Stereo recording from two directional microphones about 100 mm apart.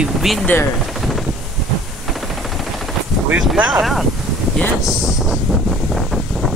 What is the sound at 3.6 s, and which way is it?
Speech, 10° right (ahead or behind).